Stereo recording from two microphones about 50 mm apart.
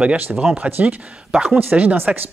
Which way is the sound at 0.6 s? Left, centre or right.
Right.